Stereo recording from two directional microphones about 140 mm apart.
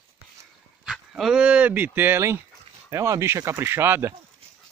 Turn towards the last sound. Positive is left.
turn(degrees=-15)  # may be behind; listen again after turning